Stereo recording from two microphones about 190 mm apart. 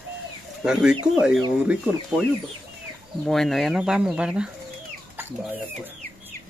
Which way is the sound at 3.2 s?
Centre (ahead or behind).